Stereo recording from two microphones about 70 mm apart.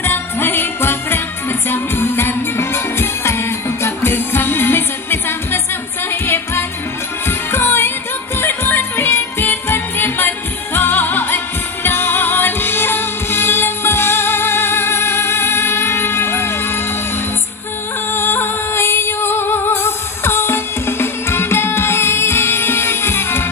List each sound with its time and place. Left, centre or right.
0.0 s jingle bell: left
1.7 s music: left
18.1 s music: left